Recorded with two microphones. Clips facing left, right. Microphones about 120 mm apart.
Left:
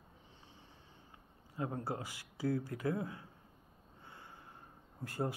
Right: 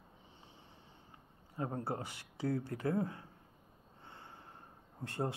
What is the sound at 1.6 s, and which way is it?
Speech, 35° right (ahead or behind).